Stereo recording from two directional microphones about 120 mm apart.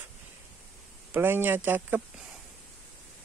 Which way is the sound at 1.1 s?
15° right (ahead or behind).